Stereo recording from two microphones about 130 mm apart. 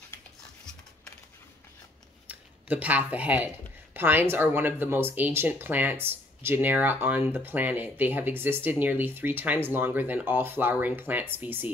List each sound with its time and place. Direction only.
2.2 s speech: 10° right (ahead or behind)